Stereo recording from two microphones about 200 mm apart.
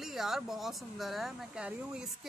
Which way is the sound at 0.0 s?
Centre (ahead or behind).